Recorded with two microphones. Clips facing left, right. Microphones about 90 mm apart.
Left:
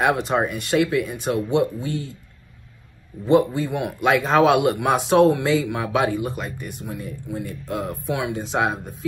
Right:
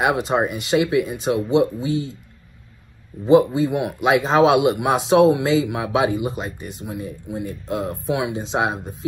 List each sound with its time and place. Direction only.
0.0 s speech: 15° right (ahead or behind)
3.3 s speech: 20° right (ahead or behind)